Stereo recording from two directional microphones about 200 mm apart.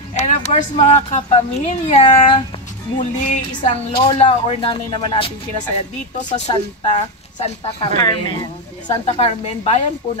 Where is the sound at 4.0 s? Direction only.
30° left (ahead or behind).